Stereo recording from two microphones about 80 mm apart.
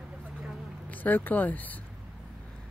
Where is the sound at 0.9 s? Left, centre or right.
Left.